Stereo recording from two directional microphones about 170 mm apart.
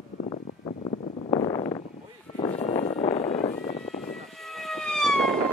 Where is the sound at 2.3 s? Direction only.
35° left (ahead or behind).